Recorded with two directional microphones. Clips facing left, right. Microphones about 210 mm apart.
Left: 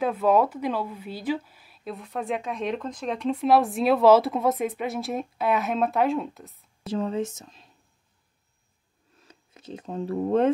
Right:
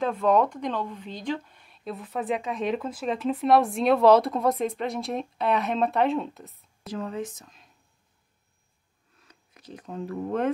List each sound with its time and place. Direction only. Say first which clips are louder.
0.0 s a woman's voice: left 1 dB; 5° left (ahead or behind)
6.9 s speech: left 5 dB; 25° left (ahead or behind)
9.3 s speech: left 5 dB; 25° left (ahead or behind)